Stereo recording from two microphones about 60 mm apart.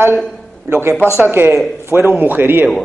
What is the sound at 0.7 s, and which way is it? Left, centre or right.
Speech, right.